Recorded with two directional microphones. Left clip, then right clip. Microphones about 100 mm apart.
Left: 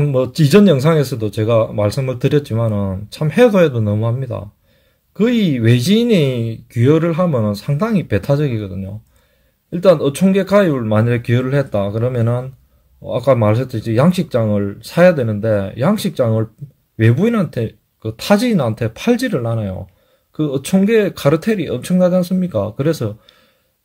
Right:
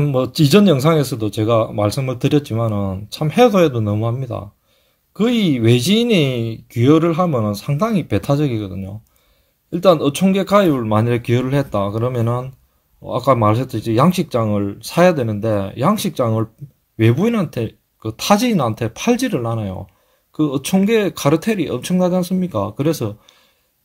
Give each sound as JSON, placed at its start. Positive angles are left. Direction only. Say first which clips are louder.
{"t": 0.0, "sound": "speech", "louder": "left 1 dB", "side_deg": -15}